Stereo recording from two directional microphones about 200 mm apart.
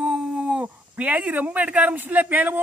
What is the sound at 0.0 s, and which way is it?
Speech, 5° right (ahead or behind).